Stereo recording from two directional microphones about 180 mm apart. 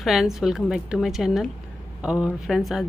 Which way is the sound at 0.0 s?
Centre (ahead or behind).